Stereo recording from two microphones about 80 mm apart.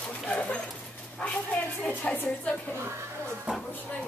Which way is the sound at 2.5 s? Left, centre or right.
Left.